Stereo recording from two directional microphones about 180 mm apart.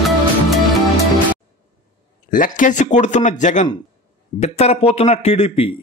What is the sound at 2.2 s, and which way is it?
A man's voice, 50° left (ahead or behind).